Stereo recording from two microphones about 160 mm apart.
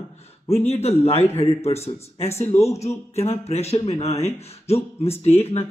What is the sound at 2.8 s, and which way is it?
Speech, 40° left (ahead or behind).